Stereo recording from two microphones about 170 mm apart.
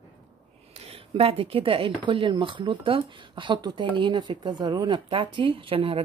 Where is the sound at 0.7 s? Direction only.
35° right (ahead or behind).